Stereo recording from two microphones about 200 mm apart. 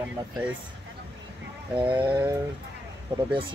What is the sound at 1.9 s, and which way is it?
Speech, 25° right (ahead or behind).